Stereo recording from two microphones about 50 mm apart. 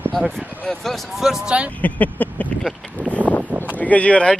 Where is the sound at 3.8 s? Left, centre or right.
Left.